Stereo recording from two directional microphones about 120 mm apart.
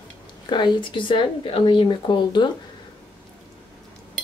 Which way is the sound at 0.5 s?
40° left (ahead or behind).